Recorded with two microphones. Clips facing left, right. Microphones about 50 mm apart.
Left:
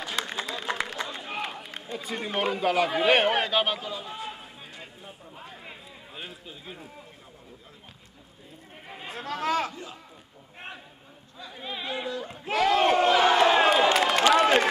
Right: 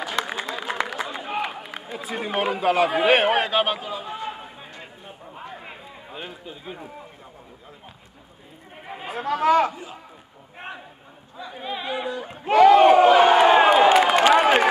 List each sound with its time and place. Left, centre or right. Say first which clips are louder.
0.0 s a sound: right 5 dB; centre
0.7 s run: right 5 dB; right
4.7 s a sound: right 3 dB; right
5.4 s run: right 6 dB; right
6.4 s a man's voice: right 6 dB; centre
8.8 s a man's voice: right 8 dB; centre
11.6 s battle cry: right 4 dB; centre
14.3 s run: right 4 dB; centre